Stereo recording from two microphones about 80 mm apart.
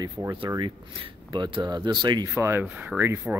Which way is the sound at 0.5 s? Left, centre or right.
Right.